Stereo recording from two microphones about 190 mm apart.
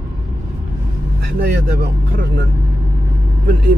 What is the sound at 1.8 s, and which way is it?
Speech, 60° right (ahead or behind).